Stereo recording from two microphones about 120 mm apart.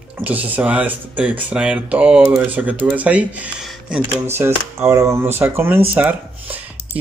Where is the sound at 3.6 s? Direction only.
10° right (ahead or behind).